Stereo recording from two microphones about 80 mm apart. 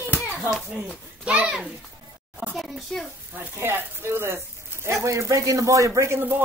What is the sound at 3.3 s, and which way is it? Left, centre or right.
Speech, right.